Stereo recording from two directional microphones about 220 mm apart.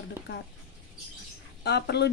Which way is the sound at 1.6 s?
50° left (ahead or behind).